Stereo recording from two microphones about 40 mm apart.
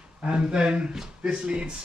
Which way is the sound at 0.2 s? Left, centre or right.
Right.